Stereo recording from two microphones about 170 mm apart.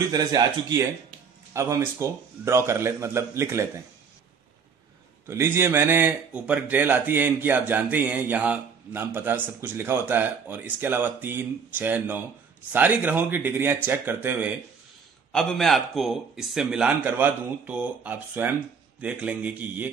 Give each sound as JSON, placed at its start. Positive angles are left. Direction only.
{"t": 0.1, "sound": "a man's voice", "side_deg": -20}
{"t": 5.2, "sound": "a man's voice", "side_deg": -15}
{"t": 15.3, "sound": "a man's voice", "side_deg": 0}